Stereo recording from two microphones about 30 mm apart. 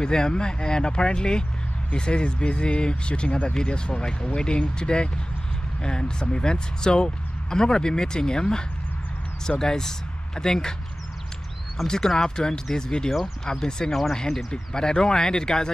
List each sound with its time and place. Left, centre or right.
0.0 s speech: left
11.9 s speech: centre